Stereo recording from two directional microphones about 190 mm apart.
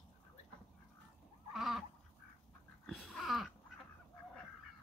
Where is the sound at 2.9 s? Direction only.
Centre (ahead or behind).